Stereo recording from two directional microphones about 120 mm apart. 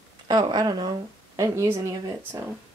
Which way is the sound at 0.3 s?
35° right (ahead or behind).